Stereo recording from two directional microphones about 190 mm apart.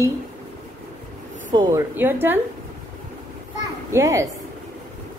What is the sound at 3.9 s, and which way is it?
Speech, 15° right (ahead or behind).